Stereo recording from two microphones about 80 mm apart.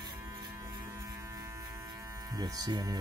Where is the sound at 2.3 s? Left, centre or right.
Right.